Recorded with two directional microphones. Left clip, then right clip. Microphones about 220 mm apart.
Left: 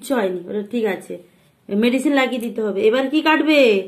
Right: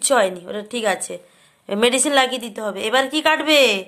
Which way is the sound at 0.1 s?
40° right (ahead or behind).